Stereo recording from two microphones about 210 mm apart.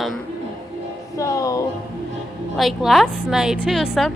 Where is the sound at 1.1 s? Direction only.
15° left (ahead or behind).